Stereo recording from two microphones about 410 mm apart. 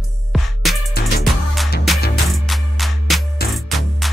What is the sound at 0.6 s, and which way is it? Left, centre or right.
Music, centre.